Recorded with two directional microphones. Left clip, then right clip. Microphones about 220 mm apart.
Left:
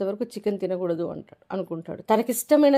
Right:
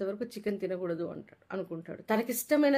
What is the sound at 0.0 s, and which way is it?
Speech, 25° left (ahead or behind).